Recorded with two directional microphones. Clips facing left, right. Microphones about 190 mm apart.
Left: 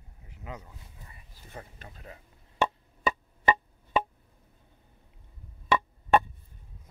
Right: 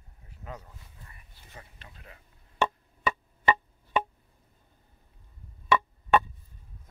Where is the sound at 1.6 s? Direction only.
40° left (ahead or behind).